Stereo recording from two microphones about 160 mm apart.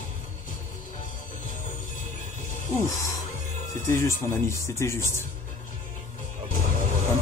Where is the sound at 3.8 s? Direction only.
15° left (ahead or behind).